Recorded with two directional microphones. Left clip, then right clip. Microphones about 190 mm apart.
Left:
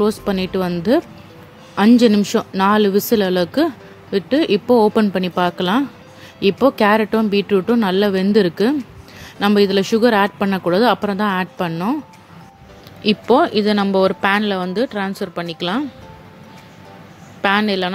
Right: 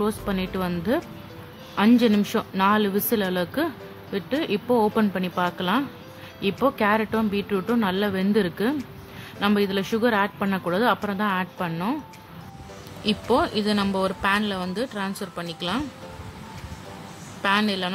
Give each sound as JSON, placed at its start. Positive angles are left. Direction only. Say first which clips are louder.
{"t": 0.0, "sound": "speech", "louder": "left 8 dB", "side_deg": 30}
{"t": 13.0, "sound": "speech", "louder": "left 8 dB", "side_deg": 25}
{"t": 17.4, "sound": "speech", "louder": "left 6 dB", "side_deg": 25}